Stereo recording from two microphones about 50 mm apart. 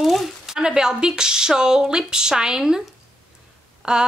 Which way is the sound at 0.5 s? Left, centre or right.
Centre.